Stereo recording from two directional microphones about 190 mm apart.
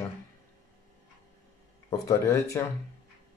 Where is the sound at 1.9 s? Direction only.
15° left (ahead or behind).